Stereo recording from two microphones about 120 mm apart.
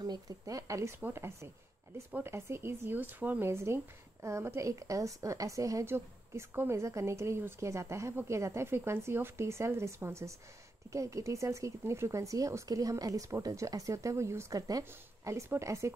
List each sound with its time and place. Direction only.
0.0 s speech: 30° right (ahead or behind)